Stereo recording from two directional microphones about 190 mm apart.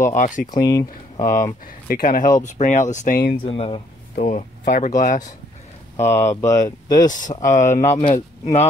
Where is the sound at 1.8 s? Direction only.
45° left (ahead or behind).